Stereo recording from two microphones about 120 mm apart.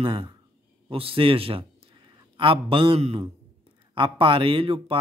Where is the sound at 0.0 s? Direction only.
45° right (ahead or behind).